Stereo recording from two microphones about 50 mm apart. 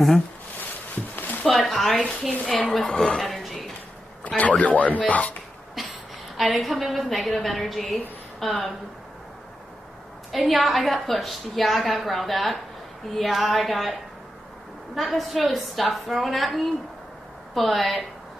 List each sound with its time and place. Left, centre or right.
1.1 s a sound: left
1.4 s speech: centre
1.7 s a woman's voice: centre
3.2 s a sound: centre
4.4 s speech: left
5.8 s a sound: centre
6.3 s a woman's voice: centre
10.3 s a woman's voice: centre
15.0 s a woman's voice: centre